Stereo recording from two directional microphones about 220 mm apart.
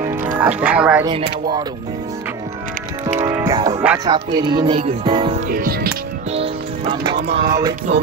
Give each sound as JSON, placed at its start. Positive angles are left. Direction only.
{"t": 0.2, "sound": "speech", "side_deg": -5}
{"t": 1.0, "sound": "speech", "side_deg": -20}
{"t": 3.2, "sound": "music", "side_deg": -10}
{"t": 3.8, "sound": "music", "side_deg": -5}
{"t": 4.5, "sound": "speech", "side_deg": -20}
{"t": 5.5, "sound": "speech", "side_deg": -40}
{"t": 6.3, "sound": "music", "side_deg": -25}